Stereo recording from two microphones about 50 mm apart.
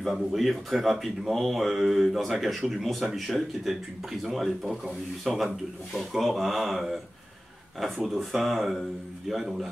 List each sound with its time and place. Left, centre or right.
0.0 s speech: centre